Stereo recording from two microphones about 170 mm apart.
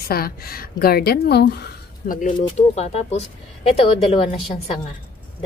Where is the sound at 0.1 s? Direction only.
60° left (ahead or behind).